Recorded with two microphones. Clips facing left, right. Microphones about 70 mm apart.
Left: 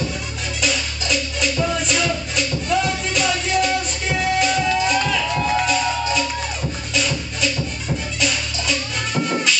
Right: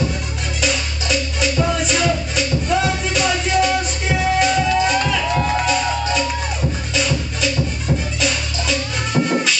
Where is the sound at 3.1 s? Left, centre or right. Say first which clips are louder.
Right 2 dB; centre.